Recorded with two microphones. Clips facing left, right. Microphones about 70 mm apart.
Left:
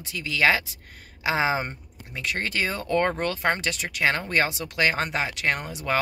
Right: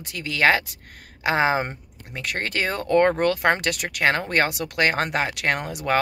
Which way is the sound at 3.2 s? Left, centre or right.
Right.